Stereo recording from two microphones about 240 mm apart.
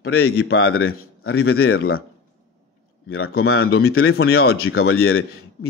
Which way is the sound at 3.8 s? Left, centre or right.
Left.